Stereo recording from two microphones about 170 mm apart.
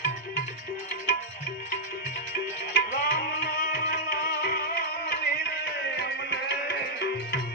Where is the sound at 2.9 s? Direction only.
65° left (ahead or behind).